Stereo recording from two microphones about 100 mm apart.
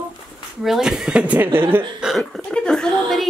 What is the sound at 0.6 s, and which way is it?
Speech, 5° right (ahead or behind).